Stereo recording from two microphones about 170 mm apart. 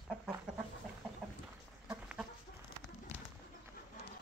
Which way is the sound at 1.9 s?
5° right (ahead or behind).